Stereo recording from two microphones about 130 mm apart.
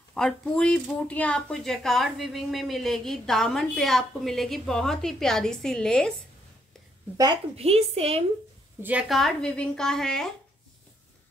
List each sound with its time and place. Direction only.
0.1 s speech: 5° left (ahead or behind)
7.5 s a woman's voice: 50° right (ahead or behind)
9.1 s speech: 5° left (ahead or behind)